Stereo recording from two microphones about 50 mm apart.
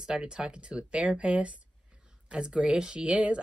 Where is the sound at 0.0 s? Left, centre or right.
Centre.